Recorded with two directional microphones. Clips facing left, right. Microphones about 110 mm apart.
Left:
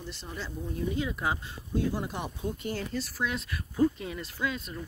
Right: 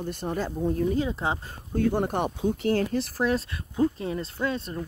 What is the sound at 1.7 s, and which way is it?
Speech, 55° right (ahead or behind).